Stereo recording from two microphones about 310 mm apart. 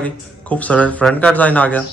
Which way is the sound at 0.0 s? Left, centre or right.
Centre.